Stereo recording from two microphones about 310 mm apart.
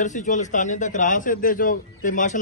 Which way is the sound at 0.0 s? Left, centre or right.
Left.